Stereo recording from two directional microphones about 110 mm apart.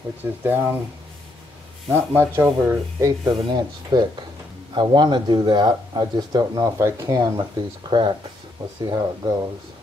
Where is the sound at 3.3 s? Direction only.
40° right (ahead or behind).